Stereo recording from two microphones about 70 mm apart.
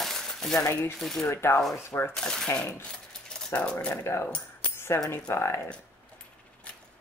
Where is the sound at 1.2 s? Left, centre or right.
Left.